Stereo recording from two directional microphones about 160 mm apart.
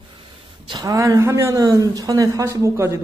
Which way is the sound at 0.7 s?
20° right (ahead or behind).